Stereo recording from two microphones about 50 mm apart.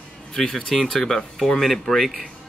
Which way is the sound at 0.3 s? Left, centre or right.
Centre.